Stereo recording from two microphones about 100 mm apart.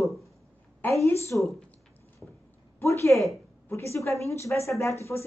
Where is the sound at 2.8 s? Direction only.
25° left (ahead or behind).